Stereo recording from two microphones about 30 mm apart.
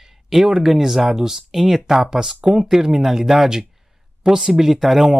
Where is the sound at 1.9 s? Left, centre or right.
Centre.